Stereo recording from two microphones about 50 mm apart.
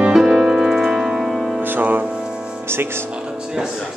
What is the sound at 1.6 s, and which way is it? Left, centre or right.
Music, right.